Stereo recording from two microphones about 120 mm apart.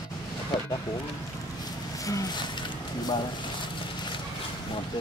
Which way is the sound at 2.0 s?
30° left (ahead or behind).